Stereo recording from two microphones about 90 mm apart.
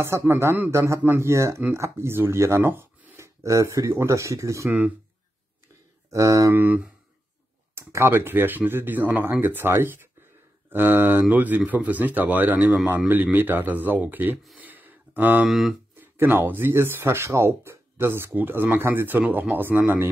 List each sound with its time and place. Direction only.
0.3 s speech: 25° right (ahead or behind)
4.6 s speech: 15° right (ahead or behind)
6.0 s speech: 40° right (ahead or behind)
6.5 s speech: 20° right (ahead or behind)
14.6 s a sound: 20° right (ahead or behind)
16.0 s speech: 25° right (ahead or behind)